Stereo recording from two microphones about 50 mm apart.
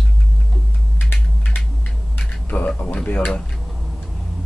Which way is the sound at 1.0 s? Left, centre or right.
Left.